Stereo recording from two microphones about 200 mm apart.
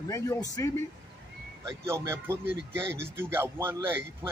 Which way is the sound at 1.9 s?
15° right (ahead or behind).